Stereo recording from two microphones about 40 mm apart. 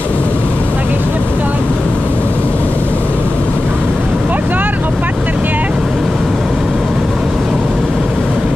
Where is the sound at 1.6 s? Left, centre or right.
Left.